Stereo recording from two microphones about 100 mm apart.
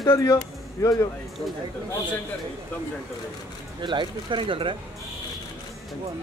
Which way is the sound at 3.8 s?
50° right (ahead or behind).